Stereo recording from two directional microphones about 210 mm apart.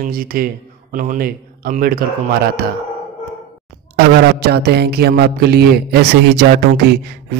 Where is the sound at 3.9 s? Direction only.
50° right (ahead or behind).